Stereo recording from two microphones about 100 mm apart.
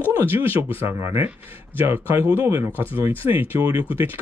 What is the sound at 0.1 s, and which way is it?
Speech, 20° right (ahead or behind).